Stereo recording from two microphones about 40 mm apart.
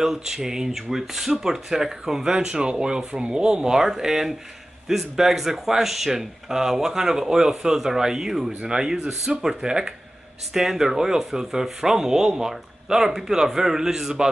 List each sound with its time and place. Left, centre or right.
0.0 s speech: centre